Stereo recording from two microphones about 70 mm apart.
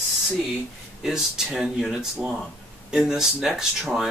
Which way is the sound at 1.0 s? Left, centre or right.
Centre.